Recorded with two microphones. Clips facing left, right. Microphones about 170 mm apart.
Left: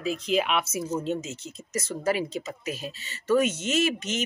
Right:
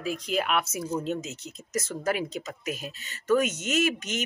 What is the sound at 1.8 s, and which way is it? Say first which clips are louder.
Speech: left 1 dB; centre (ahead or behind).